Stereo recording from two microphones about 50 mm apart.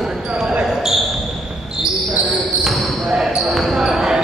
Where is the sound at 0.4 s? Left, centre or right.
Centre.